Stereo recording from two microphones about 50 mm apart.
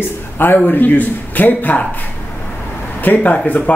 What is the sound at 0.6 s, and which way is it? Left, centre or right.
Speech, left.